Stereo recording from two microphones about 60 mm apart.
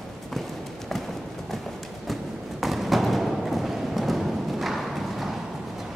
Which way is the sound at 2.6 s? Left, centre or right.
Centre.